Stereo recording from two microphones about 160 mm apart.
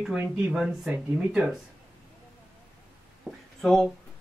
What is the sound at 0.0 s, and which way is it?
Speech, 5° right (ahead or behind).